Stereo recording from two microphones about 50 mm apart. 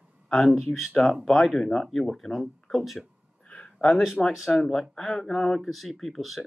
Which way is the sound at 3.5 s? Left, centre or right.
Left.